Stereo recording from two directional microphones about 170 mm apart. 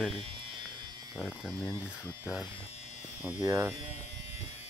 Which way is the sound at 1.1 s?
Centre (ahead or behind).